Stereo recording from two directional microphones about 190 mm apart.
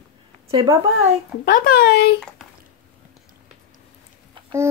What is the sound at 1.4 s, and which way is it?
Speech, 50° left (ahead or behind).